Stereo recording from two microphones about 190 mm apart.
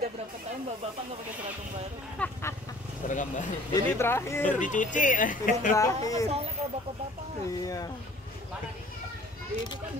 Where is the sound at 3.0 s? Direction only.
40° left (ahead or behind).